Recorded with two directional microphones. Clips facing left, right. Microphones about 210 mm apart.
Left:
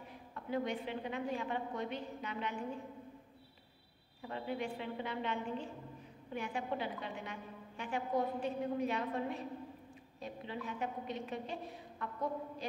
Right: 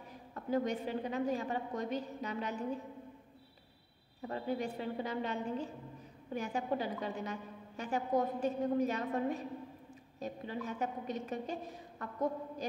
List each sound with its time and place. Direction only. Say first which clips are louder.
0.3 s a woman's voice: right 4 dB; 40° right (ahead or behind)
4.3 s a woman's voice: right 3 dB; 40° right (ahead or behind)